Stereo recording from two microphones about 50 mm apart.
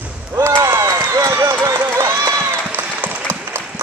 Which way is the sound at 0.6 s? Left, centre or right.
Right.